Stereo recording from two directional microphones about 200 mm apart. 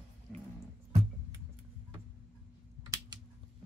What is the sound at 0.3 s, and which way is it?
Music, 5° left (ahead or behind).